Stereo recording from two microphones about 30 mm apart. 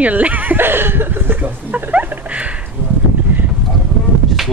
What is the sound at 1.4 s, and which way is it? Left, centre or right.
Speech, right.